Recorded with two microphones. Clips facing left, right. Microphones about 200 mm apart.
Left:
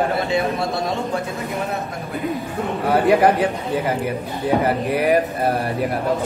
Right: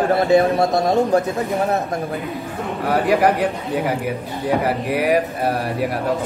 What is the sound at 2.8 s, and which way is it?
A man's voice, centre (ahead or behind).